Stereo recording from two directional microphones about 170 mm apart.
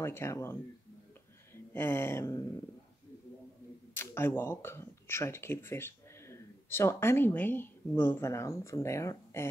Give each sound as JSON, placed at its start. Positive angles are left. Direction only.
{"t": 0.0, "sound": "speech", "side_deg": 15}
{"t": 1.5, "sound": "a sound", "side_deg": 15}
{"t": 3.9, "sound": "speech", "side_deg": 15}